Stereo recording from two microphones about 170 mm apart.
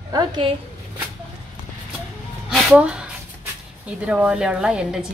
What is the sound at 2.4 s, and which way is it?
A woman's voice, centre (ahead or behind).